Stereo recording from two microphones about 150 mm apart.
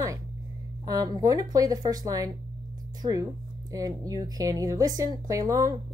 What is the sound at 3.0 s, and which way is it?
Speech, 35° right (ahead or behind).